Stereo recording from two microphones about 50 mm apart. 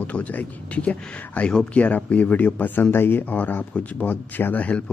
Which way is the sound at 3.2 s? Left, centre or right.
Left.